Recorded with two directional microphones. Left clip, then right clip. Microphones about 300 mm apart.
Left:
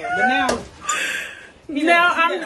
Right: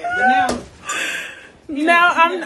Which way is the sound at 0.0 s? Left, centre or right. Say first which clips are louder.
Right 2 dB; centre.